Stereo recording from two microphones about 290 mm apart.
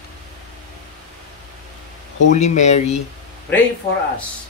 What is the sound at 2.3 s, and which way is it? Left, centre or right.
Speech, left.